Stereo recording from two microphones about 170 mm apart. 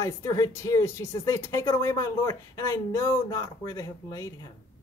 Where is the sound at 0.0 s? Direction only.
20° left (ahead or behind).